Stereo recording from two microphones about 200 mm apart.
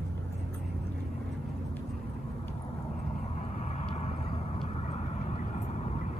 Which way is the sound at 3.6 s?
35° left (ahead or behind).